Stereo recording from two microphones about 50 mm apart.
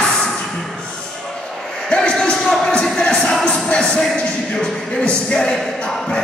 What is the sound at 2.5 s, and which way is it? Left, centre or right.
Music, centre.